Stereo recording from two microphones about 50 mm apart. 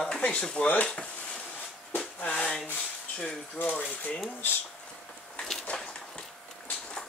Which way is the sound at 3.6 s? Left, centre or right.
Left.